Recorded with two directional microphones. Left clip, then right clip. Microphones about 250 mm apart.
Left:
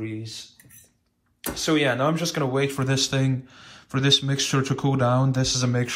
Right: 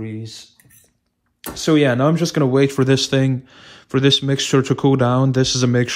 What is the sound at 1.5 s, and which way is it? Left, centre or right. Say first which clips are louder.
Speech: right 6 dB; right.